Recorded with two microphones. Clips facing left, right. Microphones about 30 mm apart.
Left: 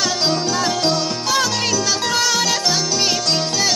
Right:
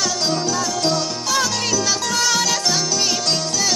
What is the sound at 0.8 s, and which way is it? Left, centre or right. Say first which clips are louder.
Music: left 2 dB; centre.